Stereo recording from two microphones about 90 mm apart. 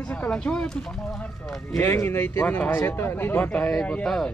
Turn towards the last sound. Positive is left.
turn(degrees=5)  # may be behind; listen again after turning